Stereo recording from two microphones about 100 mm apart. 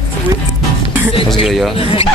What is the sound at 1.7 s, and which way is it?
Speech, 70° left (ahead or behind).